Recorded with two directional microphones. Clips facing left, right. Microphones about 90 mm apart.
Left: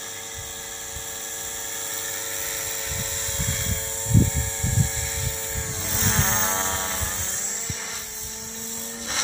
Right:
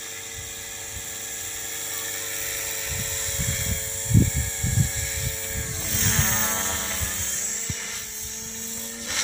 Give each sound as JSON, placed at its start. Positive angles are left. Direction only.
{"t": 5.9, "sound": "vehicle", "side_deg": 30}